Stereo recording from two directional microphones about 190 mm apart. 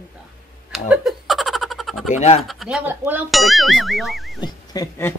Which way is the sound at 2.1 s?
35° left (ahead or behind).